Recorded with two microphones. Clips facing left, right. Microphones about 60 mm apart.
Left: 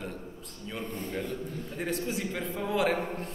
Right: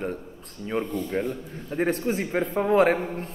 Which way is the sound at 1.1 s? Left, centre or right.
Right.